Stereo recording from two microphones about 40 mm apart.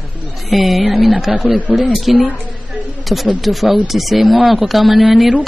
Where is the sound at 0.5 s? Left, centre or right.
Centre.